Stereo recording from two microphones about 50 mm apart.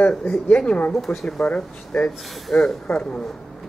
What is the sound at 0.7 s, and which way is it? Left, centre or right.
Speech, left.